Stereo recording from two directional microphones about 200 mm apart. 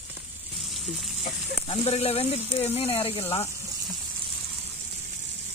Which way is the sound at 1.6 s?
30° left (ahead or behind).